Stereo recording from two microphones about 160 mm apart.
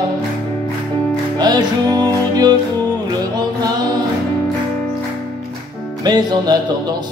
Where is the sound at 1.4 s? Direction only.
25° right (ahead or behind).